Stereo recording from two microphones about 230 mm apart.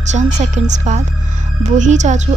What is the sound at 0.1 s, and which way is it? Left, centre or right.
A woman's voice, right.